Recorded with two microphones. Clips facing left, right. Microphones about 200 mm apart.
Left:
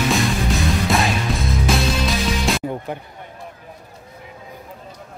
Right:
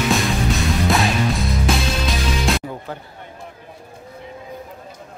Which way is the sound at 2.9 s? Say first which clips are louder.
Left 3 dB; 15° left (ahead or behind).